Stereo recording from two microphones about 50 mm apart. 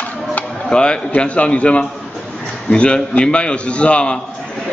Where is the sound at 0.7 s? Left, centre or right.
Centre.